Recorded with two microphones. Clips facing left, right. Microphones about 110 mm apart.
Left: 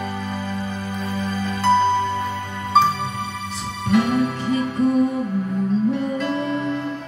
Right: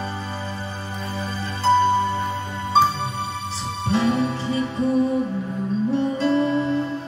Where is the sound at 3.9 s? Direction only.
30° right (ahead or behind).